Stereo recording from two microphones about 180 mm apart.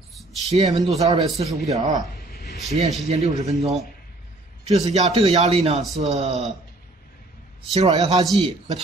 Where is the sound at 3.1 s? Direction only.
35° right (ahead or behind).